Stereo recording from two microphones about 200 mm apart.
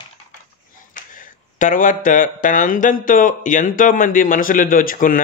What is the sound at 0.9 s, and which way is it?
Speech, 40° left (ahead or behind).